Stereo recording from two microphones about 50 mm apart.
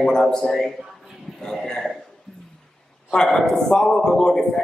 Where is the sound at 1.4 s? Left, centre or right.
Centre.